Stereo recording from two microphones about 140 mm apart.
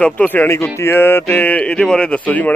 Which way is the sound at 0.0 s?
10° left (ahead or behind).